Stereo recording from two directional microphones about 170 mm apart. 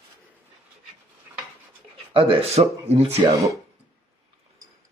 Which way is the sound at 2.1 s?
30° right (ahead or behind).